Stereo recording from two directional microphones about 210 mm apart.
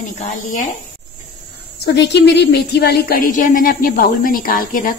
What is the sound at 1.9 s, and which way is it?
Speech, 55° left (ahead or behind).